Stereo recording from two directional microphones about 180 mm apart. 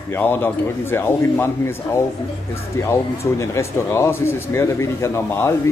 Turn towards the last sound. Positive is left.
turn(degrees=15)  # may be behind; listen again after turning